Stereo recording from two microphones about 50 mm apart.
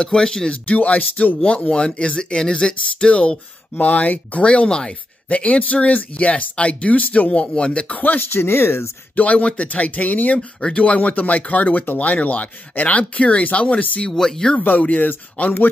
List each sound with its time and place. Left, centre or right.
0.0 s speech: centre
0.7 s speech: left
8.3 s speech: left
9.1 s speech: left
14.1 s speech: centre
14.8 s speech: left